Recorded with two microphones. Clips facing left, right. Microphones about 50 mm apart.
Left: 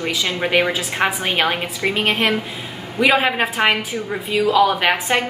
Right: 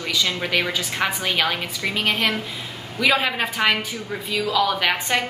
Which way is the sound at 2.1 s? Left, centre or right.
Centre.